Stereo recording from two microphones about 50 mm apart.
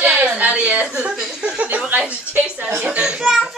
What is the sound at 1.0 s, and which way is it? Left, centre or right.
A woman's voice, centre.